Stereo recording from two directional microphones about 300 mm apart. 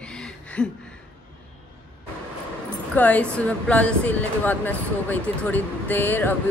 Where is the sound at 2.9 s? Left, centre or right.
Centre.